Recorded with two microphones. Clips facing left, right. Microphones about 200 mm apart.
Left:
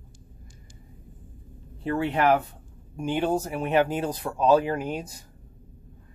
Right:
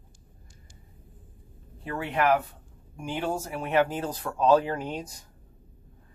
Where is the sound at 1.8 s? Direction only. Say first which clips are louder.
Left 3 dB; 30° left (ahead or behind); by 5.1 s 10° left (ahead or behind).